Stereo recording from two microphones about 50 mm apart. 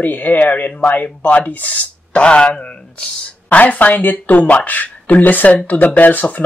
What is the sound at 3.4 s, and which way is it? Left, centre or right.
Speech, left.